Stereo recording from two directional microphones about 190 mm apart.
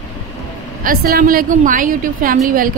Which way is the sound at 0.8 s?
50° right (ahead or behind).